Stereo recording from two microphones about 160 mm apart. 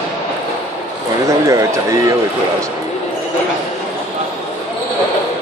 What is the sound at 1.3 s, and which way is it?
Speech, 20° right (ahead or behind).